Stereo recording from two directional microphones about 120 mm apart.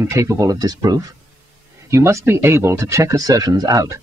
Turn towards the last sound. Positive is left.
turn(degrees=-30)  # may be behind; listen again after turning